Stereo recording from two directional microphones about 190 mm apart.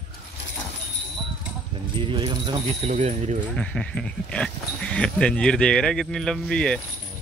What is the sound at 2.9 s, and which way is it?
Speech, 35° right (ahead or behind).